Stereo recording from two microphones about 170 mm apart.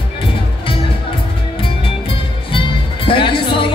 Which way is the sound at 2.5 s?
30° left (ahead or behind).